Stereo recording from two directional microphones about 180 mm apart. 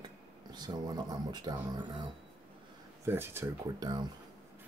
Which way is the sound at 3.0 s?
15° right (ahead or behind).